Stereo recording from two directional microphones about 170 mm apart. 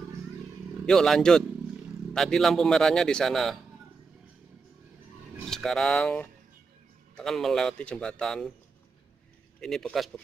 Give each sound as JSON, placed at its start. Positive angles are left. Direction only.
{"t": 0.8, "sound": "speech", "side_deg": 0}
{"t": 5.4, "sound": "speech", "side_deg": 0}
{"t": 9.6, "sound": "speech", "side_deg": 5}